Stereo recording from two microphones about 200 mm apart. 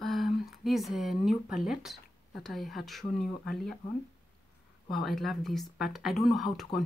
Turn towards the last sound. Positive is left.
turn(degrees=0)  # may be behind; listen again after turning